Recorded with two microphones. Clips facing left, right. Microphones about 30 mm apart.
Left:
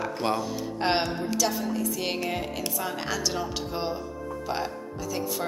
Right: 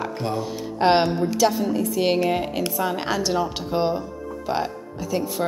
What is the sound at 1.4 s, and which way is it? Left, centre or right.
A woman's voice, centre.